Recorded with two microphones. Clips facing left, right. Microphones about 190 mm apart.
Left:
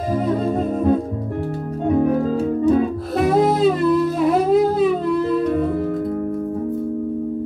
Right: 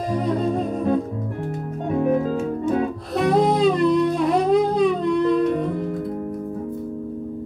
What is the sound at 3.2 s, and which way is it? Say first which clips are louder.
Music: left 2 dB; 5° left (ahead or behind).